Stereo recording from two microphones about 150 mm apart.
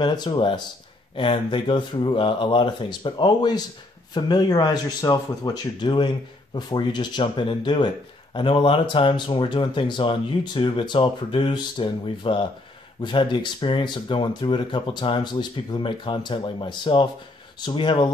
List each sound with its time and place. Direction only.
0.0 s speech: 30° left (ahead or behind)